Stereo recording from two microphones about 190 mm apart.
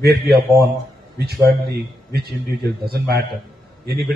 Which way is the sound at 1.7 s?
55° right (ahead or behind).